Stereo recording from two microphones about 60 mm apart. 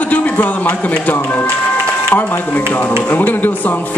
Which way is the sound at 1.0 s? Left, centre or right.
Left.